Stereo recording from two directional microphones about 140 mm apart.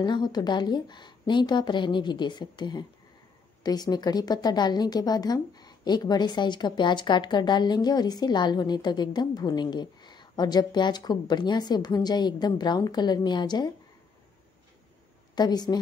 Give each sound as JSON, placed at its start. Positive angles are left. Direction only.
{"t": 0.0, "sound": "a woman's voice", "side_deg": 30}
{"t": 15.3, "sound": "a woman's voice", "side_deg": 30}